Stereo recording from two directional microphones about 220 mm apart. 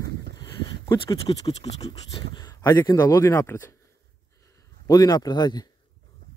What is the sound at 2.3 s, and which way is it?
Speech, 15° left (ahead or behind).